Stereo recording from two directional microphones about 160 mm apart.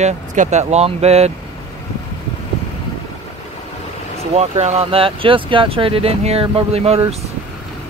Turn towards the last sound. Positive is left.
turn(degrees=-40)  # may be behind; listen again after turning